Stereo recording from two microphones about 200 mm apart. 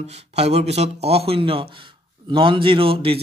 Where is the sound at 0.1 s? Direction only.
30° right (ahead or behind).